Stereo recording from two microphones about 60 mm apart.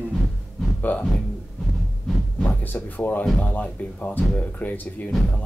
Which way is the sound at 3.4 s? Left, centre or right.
Left.